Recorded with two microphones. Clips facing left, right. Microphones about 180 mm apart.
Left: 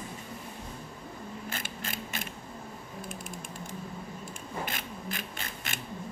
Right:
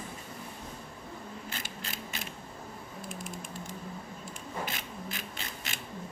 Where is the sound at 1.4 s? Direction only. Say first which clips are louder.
Left 3 dB; 50° left (ahead or behind).